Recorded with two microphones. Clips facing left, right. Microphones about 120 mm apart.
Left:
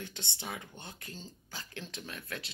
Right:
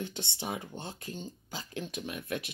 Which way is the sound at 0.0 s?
20° right (ahead or behind).